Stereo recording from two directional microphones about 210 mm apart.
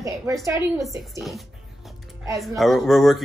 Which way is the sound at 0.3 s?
15° right (ahead or behind).